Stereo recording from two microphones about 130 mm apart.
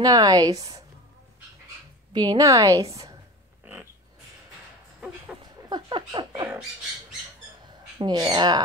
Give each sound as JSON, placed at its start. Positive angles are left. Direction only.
{"t": 0.0, "sound": "a woman's voice", "side_deg": -30}
{"t": 2.1, "sound": "a woman's voice", "side_deg": -30}
{"t": 3.6, "sound": "pig", "side_deg": -15}
{"t": 5.4, "sound": "a sound", "side_deg": -35}
{"t": 8.0, "sound": "speech", "side_deg": -35}